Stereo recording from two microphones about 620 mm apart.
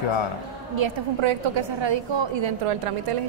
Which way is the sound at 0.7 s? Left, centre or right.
Right.